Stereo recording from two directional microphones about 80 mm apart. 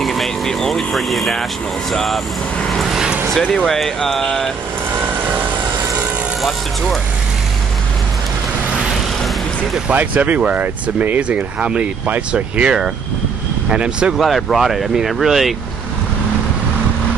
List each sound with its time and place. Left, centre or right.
0.0 s speech: centre
2.7 s vehicle: centre
3.3 s speech: centre
9.8 s speech: centre
14.2 s speech: centre